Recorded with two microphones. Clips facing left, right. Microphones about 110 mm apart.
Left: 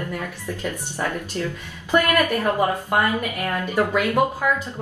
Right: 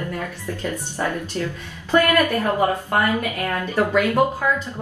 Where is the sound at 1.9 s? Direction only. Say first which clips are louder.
Right 2 dB; 15° left (ahead or behind).